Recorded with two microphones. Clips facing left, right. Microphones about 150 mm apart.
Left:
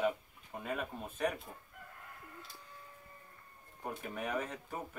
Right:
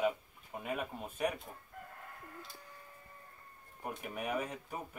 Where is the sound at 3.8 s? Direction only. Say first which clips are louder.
Even; 10° right (ahead or behind).